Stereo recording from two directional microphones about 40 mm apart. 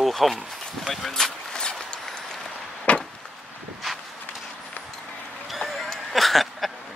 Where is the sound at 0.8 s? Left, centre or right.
Centre.